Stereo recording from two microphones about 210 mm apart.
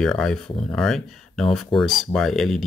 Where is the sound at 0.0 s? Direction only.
5° left (ahead or behind).